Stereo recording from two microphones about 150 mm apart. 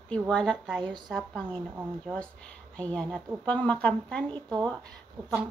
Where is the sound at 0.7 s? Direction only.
30° right (ahead or behind).